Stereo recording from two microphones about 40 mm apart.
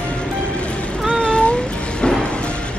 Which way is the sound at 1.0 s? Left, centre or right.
Left.